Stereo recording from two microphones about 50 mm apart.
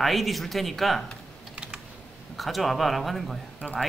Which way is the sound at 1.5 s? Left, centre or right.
Centre.